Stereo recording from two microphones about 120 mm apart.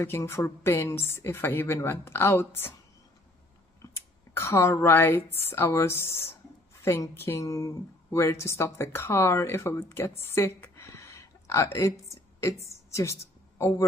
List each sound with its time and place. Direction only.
0.0 s speech: 25° left (ahead or behind)
3.8 s a woman's voice: 25° left (ahead or behind)